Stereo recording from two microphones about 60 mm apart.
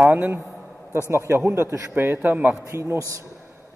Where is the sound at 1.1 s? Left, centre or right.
Right.